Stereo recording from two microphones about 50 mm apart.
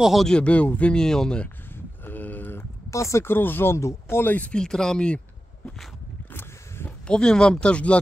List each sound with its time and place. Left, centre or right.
0.4 s speech: left
0.9 s speech: centre
2.0 s a sound: left
2.9 s speech: left
3.3 s speech: left
3.7 s speech: left
4.2 s speech: left
4.5 s speech: centre
7.1 s speech: centre